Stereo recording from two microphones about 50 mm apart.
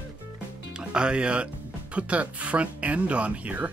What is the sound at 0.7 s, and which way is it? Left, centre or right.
Speech, centre.